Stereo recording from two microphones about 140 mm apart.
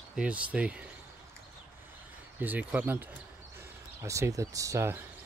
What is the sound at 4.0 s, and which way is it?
Speech, 20° right (ahead or behind).